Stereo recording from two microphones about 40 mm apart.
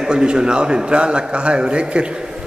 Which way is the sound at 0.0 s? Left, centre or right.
Right.